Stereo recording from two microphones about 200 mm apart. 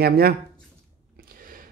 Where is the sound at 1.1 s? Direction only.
45° right (ahead or behind).